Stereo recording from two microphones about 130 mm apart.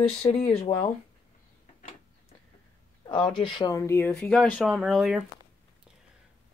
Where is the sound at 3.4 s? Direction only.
35° left (ahead or behind); by 5.2 s centre (ahead or behind).